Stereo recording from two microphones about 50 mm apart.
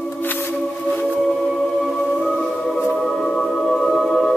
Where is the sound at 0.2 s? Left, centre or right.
Left.